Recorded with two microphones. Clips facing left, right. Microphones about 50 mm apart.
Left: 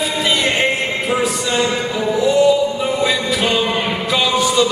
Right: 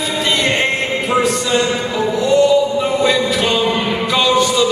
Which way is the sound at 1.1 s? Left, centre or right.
Centre.